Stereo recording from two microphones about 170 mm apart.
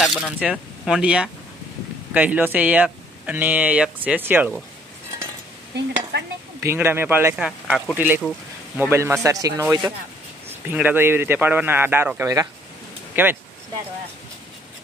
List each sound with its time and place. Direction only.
0.0 s speech: 5° right (ahead or behind)
6.6 s speech: 15° right (ahead or behind)
10.5 s speech: 10° right (ahead or behind)